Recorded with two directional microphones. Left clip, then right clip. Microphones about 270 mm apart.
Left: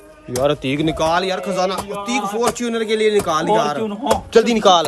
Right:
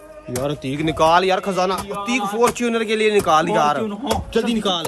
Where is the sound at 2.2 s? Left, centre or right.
Centre.